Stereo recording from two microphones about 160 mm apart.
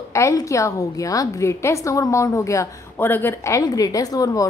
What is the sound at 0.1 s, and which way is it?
A woman's voice, 20° left (ahead or behind).